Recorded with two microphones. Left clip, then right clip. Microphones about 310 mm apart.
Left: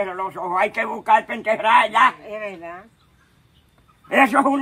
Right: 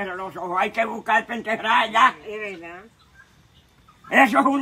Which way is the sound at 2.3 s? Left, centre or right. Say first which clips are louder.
Left 2 dB; left.